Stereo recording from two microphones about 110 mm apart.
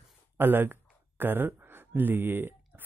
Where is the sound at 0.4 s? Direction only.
20° right (ahead or behind).